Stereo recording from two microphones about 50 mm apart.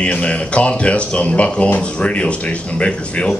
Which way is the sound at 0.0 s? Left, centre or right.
Left.